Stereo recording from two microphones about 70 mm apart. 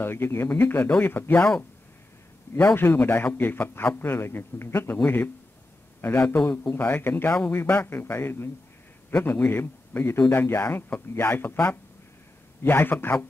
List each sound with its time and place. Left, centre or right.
0.0 s a man's voice: left
2.5 s a man's voice: left
5.9 s a sound: left
6.2 s a man's voice: left
9.1 s a man's voice: left